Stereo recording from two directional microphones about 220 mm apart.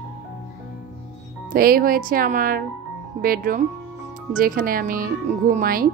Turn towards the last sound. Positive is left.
turn(degrees=-40)  # may be behind; listen again after turning